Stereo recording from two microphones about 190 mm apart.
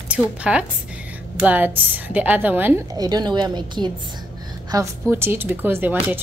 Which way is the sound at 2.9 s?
20° right (ahead or behind).